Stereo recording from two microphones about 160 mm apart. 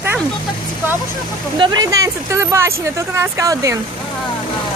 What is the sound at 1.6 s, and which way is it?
Speech, 25° right (ahead or behind).